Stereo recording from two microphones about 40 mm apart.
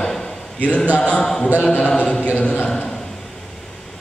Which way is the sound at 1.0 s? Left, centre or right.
Left.